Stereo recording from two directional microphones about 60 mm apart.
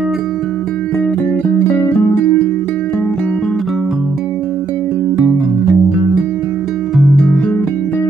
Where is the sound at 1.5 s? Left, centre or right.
Left.